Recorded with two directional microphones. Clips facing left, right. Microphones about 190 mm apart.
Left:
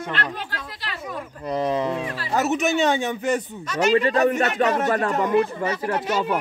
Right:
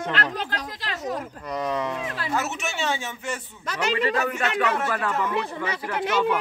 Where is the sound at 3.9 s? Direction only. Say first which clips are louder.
Left 6 dB; 40° left (ahead or behind).